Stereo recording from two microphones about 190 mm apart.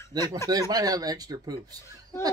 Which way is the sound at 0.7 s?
20° right (ahead or behind).